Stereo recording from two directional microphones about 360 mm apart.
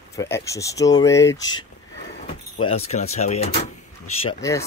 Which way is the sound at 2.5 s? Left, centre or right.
Left.